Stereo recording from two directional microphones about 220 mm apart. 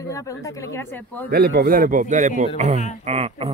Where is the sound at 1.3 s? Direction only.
45° right (ahead or behind); by 3.5 s 30° right (ahead or behind).